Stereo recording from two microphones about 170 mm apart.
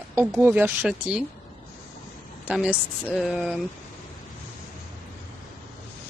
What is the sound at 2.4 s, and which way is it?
Speech, 5° right (ahead or behind).